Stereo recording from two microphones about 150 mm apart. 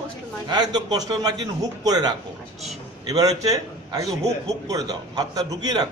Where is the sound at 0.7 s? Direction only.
25° right (ahead or behind).